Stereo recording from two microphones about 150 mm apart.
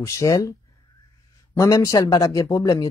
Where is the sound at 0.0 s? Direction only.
20° left (ahead or behind).